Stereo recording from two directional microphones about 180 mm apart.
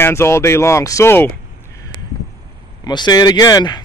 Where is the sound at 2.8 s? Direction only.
25° left (ahead or behind).